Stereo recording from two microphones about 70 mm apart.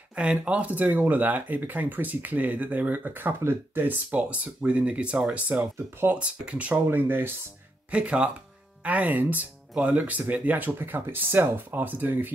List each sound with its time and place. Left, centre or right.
0.1 s speech: centre
6.9 s speech: right
7.9 s speech: centre